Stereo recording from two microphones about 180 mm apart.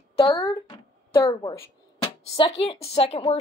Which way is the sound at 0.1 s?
30° left (ahead or behind).